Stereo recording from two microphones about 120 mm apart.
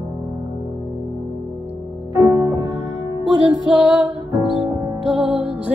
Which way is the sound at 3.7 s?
5° right (ahead or behind).